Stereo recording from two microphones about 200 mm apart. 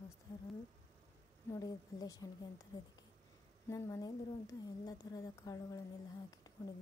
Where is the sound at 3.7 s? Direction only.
15° left (ahead or behind).